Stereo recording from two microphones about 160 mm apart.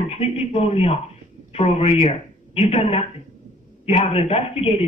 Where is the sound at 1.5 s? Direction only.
40° left (ahead or behind).